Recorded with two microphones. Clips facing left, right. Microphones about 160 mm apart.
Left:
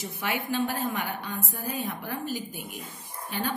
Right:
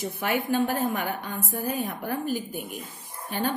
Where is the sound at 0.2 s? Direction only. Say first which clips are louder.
Right 3 dB; 50° right (ahead or behind).